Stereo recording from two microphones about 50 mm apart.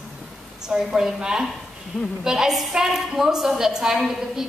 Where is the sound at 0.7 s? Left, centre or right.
Centre.